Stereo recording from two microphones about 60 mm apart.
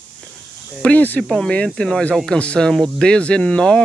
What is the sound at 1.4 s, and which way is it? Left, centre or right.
Speech, centre.